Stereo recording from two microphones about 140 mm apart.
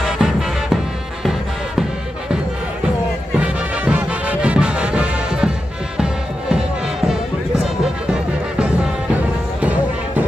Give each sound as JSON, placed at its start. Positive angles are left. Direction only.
{"t": 0.0, "sound": "music", "side_deg": -5}
{"t": 3.3, "sound": "music", "side_deg": -10}
{"t": 9.1, "sound": "music", "side_deg": -10}